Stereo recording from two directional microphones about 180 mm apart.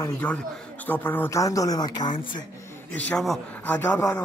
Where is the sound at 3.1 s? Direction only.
5° left (ahead or behind).